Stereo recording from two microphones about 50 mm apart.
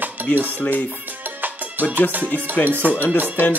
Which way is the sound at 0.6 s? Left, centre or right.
Left.